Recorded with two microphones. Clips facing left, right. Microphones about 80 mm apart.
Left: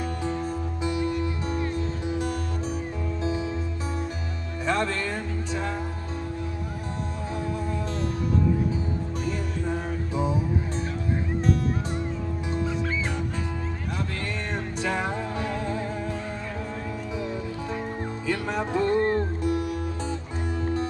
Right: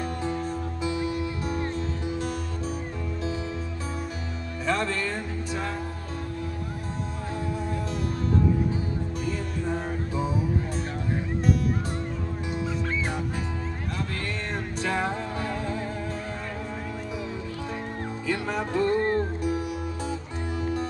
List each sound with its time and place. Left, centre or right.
1.0 s music: centre
4.6 s music: centre
12.5 s music: centre
14.8 s music: centre
18.7 s music: centre